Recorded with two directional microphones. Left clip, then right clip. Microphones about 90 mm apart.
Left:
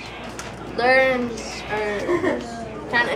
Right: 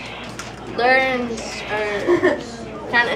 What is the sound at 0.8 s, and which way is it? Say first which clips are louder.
Speech: right 1 dB; 5° left (ahead or behind).